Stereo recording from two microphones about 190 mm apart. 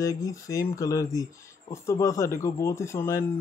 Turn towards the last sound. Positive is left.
turn(degrees=15)  # may be behind; listen again after turning